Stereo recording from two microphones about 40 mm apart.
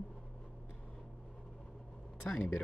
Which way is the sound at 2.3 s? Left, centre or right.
Left.